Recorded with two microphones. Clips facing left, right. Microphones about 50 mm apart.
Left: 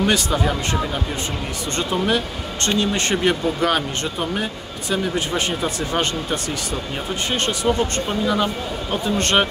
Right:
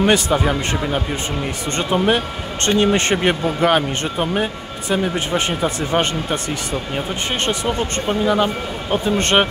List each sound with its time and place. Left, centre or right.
0.0 s speech: right